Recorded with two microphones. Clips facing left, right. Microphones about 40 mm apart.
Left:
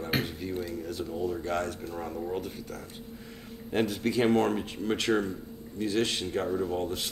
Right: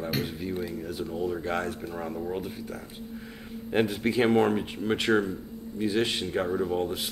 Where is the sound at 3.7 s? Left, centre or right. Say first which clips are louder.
Right 2 dB; centre.